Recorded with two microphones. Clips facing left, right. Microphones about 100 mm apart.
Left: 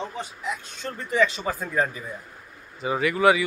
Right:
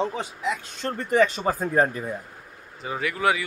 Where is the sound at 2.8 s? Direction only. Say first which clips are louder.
Left 5 dB; 5° left (ahead or behind).